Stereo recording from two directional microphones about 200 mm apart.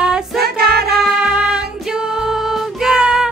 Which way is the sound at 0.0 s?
5° right (ahead or behind).